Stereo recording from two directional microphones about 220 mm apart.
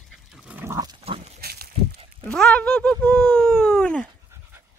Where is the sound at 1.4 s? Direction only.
45° right (ahead or behind).